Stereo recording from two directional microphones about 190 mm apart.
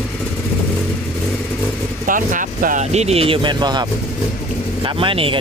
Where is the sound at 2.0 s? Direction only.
45° right (ahead or behind); by 5.4 s 25° right (ahead or behind).